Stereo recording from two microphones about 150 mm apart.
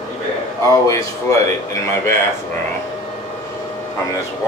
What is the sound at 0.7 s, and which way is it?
Speech, 20° left (ahead or behind).